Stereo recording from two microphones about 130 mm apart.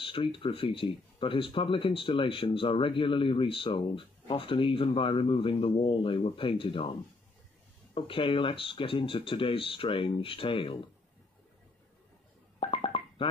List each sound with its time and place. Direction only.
0.0 s speech: 45° left (ahead or behind)
12.5 s music: 40° left (ahead or behind)